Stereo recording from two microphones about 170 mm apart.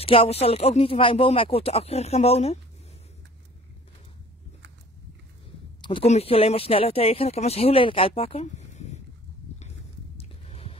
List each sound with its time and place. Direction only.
0.0 s speech: 35° left (ahead or behind)
5.8 s speech: 30° left (ahead or behind)
10.1 s a sound: 35° left (ahead or behind)